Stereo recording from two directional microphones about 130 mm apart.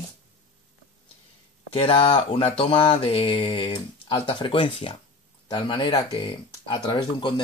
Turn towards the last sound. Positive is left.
turn(degrees=40)  # may be behind; listen again after turning